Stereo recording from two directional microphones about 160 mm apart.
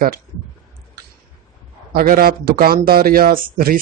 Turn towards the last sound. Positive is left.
turn(degrees=-65)  # may be behind; listen again after turning